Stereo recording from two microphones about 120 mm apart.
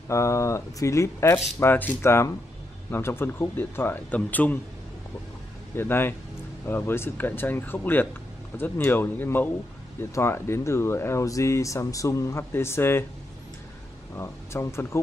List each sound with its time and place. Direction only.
0.1 s speech: 25° left (ahead or behind)
5.8 s speech: 20° left (ahead or behind)
14.1 s speech: 20° left (ahead or behind)